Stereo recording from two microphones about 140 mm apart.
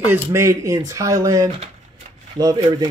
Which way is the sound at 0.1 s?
20° right (ahead or behind).